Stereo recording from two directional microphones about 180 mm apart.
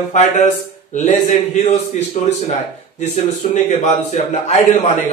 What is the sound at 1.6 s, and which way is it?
A man's voice, 40° left (ahead or behind).